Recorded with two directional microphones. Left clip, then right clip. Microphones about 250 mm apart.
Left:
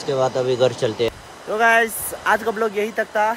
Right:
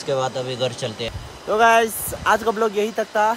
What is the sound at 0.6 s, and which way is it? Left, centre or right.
Speech, right.